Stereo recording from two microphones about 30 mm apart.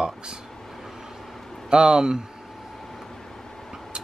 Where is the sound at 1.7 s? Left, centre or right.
Right.